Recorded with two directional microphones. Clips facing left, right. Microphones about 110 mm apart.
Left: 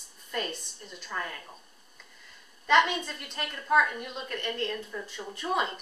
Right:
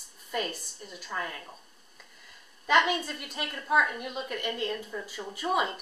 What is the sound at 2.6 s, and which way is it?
A woman's voice, 5° right (ahead or behind).